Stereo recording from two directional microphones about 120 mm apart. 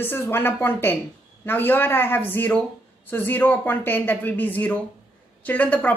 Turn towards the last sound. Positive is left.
turn(degrees=10)  # may be behind; listen again after turning